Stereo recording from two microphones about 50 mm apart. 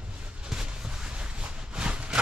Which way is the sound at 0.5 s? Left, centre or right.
Centre.